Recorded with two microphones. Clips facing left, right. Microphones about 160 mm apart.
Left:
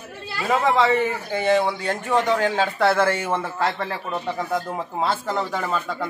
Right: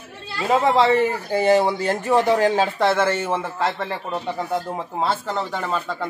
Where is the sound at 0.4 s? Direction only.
25° right (ahead or behind).